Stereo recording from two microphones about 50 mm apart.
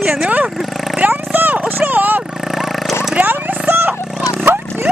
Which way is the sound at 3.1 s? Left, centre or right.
Right.